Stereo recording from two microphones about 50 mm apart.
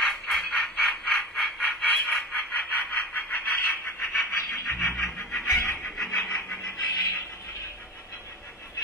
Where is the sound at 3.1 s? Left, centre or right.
Left.